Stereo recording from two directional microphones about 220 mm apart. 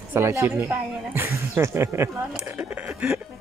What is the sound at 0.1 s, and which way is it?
Speech, 10° right (ahead or behind).